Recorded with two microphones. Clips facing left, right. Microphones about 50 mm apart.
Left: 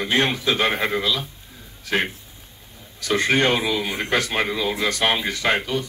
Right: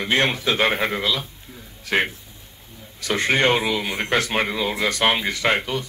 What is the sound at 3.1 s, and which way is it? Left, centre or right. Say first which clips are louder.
A man's voice: even; right.